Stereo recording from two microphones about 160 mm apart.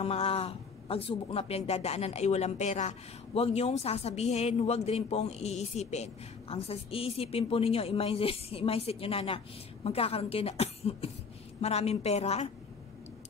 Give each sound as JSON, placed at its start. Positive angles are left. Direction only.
{"t": 0.0, "sound": "speech", "side_deg": 40}